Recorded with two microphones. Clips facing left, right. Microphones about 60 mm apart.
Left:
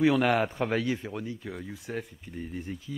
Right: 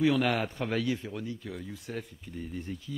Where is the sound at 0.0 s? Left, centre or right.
Centre.